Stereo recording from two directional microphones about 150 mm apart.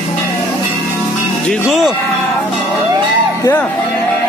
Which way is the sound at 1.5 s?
Centre (ahead or behind).